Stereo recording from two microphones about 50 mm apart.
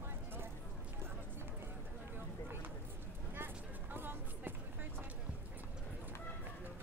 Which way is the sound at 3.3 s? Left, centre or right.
Right.